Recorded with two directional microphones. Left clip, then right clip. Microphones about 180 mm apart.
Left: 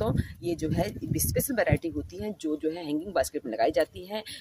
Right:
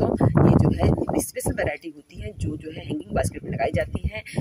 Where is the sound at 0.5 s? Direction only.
Centre (ahead or behind).